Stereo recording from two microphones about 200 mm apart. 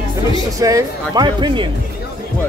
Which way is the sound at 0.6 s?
20° right (ahead or behind).